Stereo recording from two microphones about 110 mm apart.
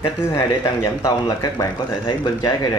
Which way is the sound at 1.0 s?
35° left (ahead or behind).